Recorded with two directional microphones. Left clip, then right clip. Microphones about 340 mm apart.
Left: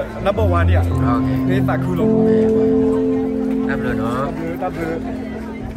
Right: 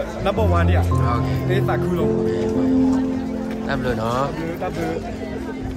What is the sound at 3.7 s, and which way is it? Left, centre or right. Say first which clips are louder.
Speech: left 1 dB; centre.